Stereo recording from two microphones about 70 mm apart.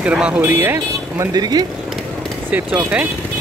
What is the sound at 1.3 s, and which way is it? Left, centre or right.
Speech, right.